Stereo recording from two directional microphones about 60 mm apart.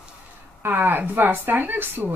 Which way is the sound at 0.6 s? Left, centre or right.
Right.